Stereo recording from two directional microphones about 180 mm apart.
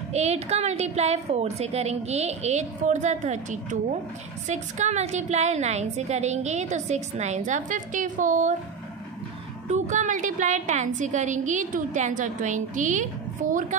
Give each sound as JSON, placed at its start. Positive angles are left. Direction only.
{"t": 0.1, "sound": "a woman's voice", "side_deg": -35}
{"t": 9.7, "sound": "a woman's voice", "side_deg": -40}